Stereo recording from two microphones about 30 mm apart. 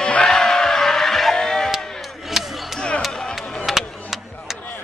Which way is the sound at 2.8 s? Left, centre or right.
Left.